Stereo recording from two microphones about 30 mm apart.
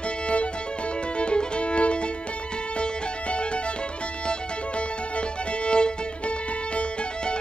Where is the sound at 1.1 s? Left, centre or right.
Left.